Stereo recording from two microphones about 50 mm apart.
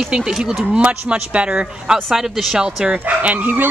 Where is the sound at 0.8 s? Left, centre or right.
Right.